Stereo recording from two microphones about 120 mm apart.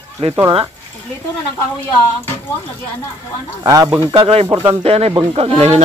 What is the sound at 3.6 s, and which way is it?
Speech, 30° right (ahead or behind).